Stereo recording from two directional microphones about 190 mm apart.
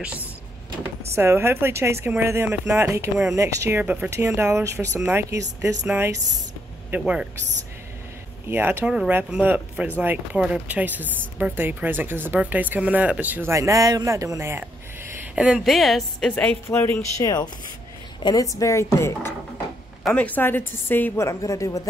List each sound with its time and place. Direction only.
1.1 s a man's voice: 15° right (ahead or behind)
8.5 s a woman's voice: 10° right (ahead or behind); by 21.8 s 15° left (ahead or behind)